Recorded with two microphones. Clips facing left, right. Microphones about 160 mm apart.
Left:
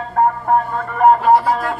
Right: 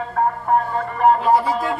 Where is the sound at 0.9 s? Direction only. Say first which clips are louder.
Left 4 dB; 55° left (ahead or behind).